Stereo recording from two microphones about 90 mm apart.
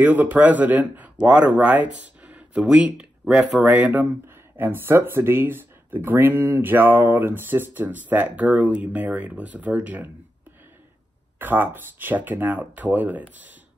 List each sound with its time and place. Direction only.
0.0 s speech: 20° right (ahead or behind)
11.3 s speech: 20° right (ahead or behind)